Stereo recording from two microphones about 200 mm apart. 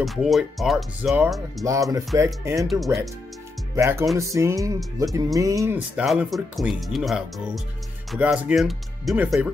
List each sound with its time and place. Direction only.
0.0 s speech: centre (ahead or behind)
2.7 s speech: centre (ahead or behind)
3.7 s speech: 10° right (ahead or behind)